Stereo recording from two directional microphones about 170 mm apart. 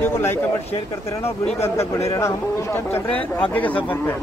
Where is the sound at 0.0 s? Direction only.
15° left (ahead or behind).